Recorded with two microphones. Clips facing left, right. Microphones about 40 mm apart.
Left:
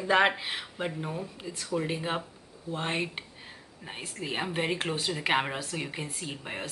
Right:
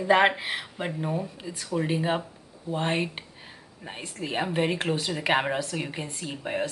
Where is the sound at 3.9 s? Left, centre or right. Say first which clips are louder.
Right 2 dB; centre.